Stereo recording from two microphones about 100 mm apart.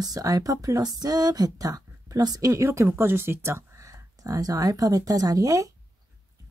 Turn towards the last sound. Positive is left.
turn(degrees=-35)  # may be behind; listen again after turning